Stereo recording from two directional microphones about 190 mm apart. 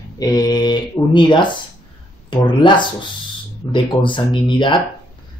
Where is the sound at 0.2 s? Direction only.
20° left (ahead or behind).